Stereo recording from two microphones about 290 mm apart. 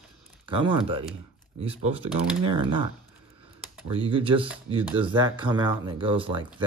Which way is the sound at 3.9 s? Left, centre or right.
Centre.